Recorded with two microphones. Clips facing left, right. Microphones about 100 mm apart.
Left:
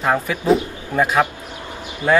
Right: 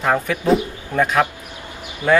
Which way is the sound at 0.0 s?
5° left (ahead or behind).